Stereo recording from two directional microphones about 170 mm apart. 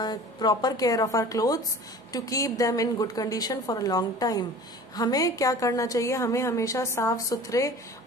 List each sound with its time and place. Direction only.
0.0 s a woman's voice: 25° left (ahead or behind)